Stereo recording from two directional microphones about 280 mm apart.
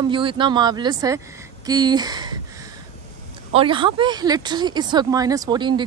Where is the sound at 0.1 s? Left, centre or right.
Centre.